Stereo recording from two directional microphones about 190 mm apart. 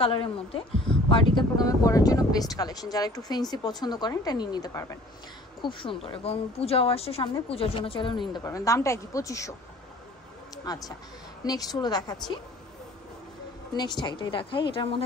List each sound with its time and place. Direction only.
0.0 s a woman's voice: 25° left (ahead or behind)
10.6 s a woman's voice: 20° left (ahead or behind)
13.7 s a woman's voice: 20° left (ahead or behind)